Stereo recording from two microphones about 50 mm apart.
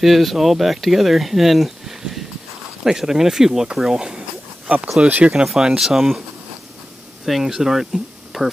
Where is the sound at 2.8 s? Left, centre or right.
Centre.